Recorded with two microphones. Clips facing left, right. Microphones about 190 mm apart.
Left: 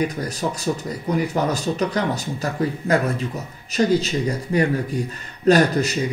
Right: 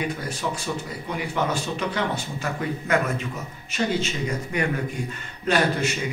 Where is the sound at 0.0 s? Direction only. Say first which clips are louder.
Left 4 dB; 40° left (ahead or behind).